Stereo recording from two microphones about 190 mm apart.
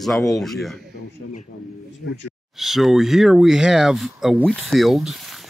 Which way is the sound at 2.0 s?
70° left (ahead or behind).